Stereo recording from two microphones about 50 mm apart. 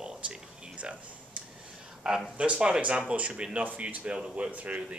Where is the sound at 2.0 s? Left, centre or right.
Centre.